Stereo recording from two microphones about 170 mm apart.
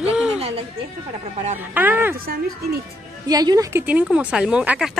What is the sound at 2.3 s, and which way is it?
Speech, 65° right (ahead or behind).